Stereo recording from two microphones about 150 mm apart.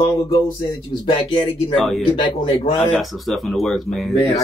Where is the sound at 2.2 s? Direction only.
35° left (ahead or behind).